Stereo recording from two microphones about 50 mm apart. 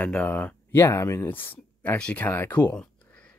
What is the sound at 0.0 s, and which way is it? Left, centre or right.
Speech, left.